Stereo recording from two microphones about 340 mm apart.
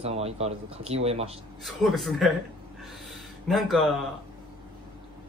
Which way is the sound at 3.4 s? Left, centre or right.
Centre.